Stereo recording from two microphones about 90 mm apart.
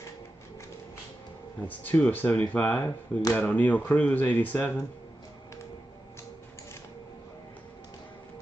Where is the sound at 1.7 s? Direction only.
20° left (ahead or behind).